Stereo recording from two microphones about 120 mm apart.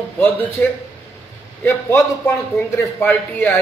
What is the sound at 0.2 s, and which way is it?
Speech, 15° left (ahead or behind).